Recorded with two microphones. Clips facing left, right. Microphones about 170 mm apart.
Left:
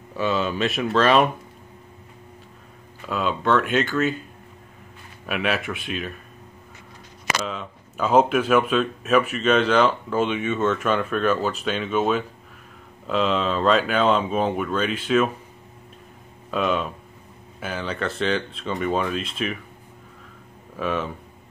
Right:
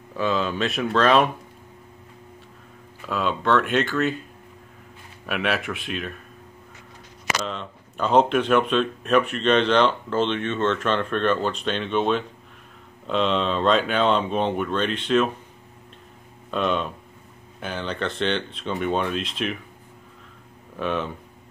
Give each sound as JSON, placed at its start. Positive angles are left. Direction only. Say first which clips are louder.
{"t": 0.1, "sound": "speech", "louder": "even", "side_deg": 0}
{"t": 3.1, "sound": "speech", "louder": "even", "side_deg": 0}
{"t": 5.2, "sound": "speech", "louder": "even", "side_deg": 0}
{"t": 7.4, "sound": "speech", "louder": "even", "side_deg": 5}
{"t": 16.4, "sound": "speech", "louder": "left 1 dB", "side_deg": 5}
{"t": 20.7, "sound": "speech", "louder": "even", "side_deg": 0}